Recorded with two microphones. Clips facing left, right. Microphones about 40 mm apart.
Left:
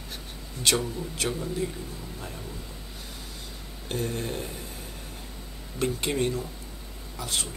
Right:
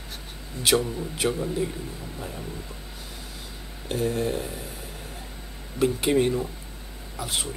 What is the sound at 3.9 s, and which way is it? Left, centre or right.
Speech, centre.